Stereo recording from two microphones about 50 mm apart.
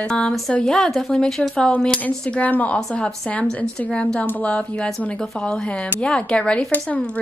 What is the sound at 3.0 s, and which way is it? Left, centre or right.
Speech, left.